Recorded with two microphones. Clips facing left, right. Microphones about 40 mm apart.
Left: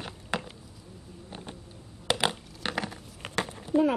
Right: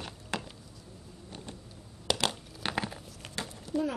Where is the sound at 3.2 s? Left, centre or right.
Left.